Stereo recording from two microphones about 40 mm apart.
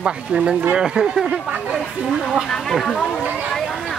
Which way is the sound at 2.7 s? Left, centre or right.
Centre.